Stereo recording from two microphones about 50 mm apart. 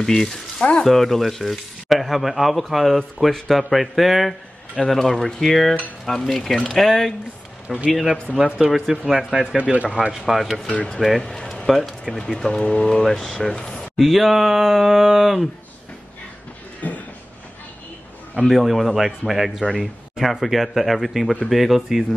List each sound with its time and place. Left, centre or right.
0.0 s speech: centre
8.6 s speech: centre
9.6 s speech: right
10.1 s speech: centre
11.2 s speech: centre
11.6 s speech: centre
13.9 s speech: centre
16.8 s a sound: left
18.4 s speech: centre